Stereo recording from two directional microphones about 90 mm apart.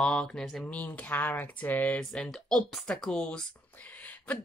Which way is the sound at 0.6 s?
15° left (ahead or behind).